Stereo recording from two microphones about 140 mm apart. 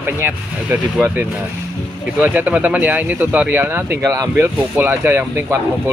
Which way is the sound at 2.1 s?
10° right (ahead or behind).